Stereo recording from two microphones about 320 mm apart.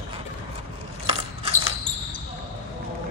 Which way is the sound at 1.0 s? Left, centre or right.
Centre.